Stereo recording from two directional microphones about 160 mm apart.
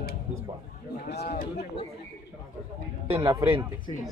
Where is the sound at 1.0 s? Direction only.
85° left.